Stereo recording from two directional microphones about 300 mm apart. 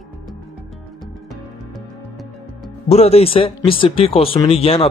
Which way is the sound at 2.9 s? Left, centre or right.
Left.